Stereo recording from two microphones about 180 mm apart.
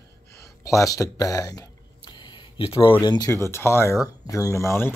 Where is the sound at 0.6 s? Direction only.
20° left (ahead or behind).